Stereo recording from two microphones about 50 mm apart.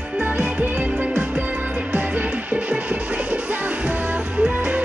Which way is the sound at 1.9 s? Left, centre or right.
Right.